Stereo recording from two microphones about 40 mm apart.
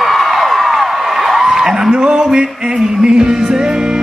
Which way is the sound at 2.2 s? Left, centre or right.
Centre.